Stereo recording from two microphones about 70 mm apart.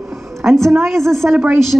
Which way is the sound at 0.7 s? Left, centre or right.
Centre.